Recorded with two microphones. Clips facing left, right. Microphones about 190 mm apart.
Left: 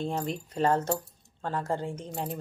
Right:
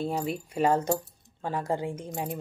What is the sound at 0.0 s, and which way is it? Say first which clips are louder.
Speech: right 2 dB; 5° right (ahead or behind).